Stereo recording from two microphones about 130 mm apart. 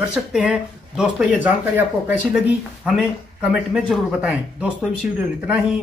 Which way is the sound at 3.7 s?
10° right (ahead or behind).